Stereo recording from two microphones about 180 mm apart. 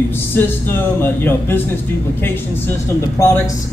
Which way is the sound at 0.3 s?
10° left (ahead or behind).